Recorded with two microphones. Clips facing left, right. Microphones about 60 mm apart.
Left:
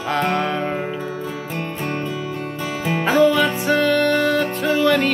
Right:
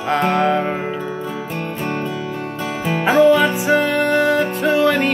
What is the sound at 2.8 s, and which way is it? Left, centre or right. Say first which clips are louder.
Music: right 3 dB; centre.